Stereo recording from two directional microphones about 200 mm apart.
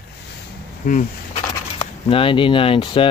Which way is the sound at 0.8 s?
40° left (ahead or behind).